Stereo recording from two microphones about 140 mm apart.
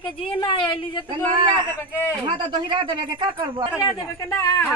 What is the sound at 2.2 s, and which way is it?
Speech, 35° right (ahead or behind).